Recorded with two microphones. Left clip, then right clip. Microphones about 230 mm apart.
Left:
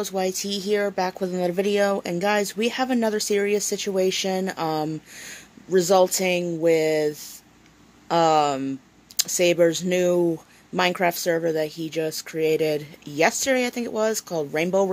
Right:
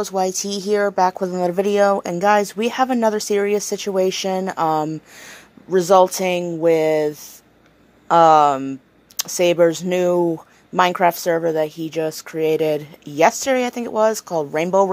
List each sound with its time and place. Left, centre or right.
0.0 s speech: centre
5.3 s a sound: centre
6.2 s speech: centre
14.1 s speech: centre
14.4 s speech: centre